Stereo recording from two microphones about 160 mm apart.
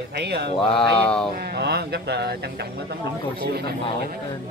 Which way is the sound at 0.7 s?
5° left (ahead or behind).